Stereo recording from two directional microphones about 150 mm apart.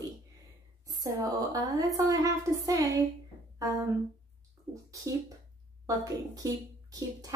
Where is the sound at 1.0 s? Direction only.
25° right (ahead or behind).